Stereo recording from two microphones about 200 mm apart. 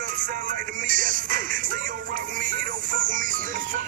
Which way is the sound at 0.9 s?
40° right (ahead or behind).